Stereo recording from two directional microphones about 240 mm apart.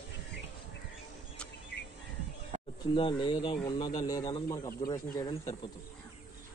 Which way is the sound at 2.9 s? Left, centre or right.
Centre.